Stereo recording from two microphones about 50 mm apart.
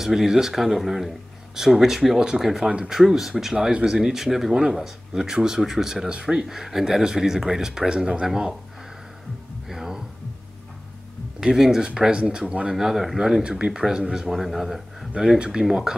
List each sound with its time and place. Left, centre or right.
0.0 s speech: centre
9.7 s a sound: centre
11.3 s speech: centre
12.7 s speech: centre
13.2 s speech: centre
15.3 s speech: centre
15.6 s speech: centre